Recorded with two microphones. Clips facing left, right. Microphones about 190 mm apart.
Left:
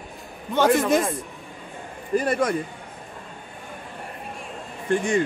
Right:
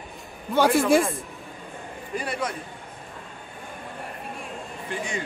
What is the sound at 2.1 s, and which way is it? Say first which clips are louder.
Speech: left 8 dB; 45° left (ahead or behind).